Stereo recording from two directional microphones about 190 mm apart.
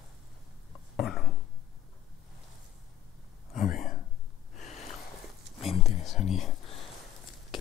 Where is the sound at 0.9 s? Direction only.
Centre (ahead or behind).